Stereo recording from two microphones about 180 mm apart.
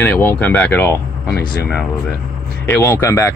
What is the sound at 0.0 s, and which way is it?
Speech, 10° left (ahead or behind).